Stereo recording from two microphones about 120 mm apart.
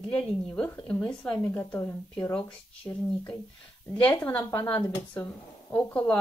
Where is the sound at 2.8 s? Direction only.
10° left (ahead or behind).